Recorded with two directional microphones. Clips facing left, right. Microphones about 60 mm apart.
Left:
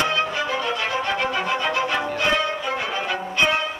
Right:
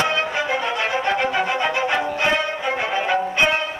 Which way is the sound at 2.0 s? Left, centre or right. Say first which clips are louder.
Right 1 dB; right.